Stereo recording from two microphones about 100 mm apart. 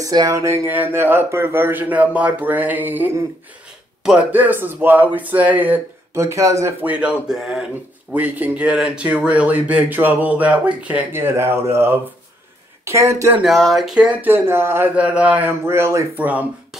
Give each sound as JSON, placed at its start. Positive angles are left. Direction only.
{"t": 0.0, "sound": "speech", "side_deg": -35}
{"t": 4.3, "sound": "speech", "side_deg": -20}
{"t": 6.1, "sound": "speech", "side_deg": -30}
{"t": 6.8, "sound": "speech", "side_deg": -15}
{"t": 13.4, "sound": "speech", "side_deg": 0}
{"t": 14.3, "sound": "speech", "side_deg": -25}
{"t": 15.0, "sound": "speech", "side_deg": -15}
{"t": 16.2, "sound": "speech", "side_deg": -15}